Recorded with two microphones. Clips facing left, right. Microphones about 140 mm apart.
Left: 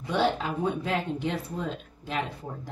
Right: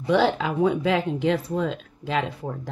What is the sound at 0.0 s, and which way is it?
Speech, 90° right.